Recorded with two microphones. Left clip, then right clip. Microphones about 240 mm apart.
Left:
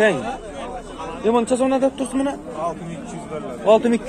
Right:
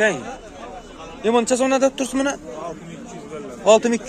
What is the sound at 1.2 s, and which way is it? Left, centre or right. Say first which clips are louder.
A man's voice: even; right.